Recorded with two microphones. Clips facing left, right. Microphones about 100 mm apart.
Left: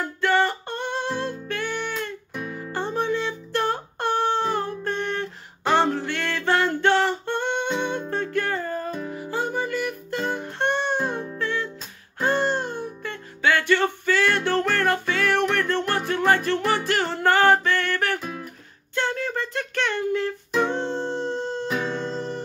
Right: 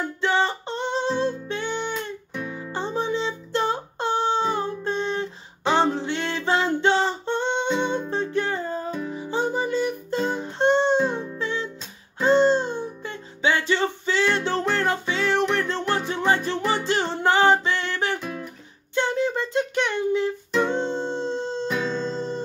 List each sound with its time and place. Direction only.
0.0 s music: 20° right (ahead or behind)
2.3 s music: centre (ahead or behind)
2.7 s music: 20° right (ahead or behind)
18.2 s guitar: centre (ahead or behind)
18.9 s a sound: 20° right (ahead or behind)
20.6 s music: 20° right (ahead or behind)
21.8 s music: 15° left (ahead or behind)
22.1 s music: 20° right (ahead or behind)